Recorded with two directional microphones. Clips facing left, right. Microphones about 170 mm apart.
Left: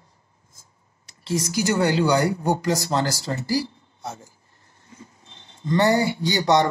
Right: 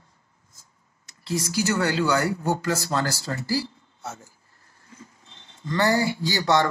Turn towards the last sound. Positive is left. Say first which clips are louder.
# left 3 dB
turn(degrees=20)  # may be behind; listen again after turning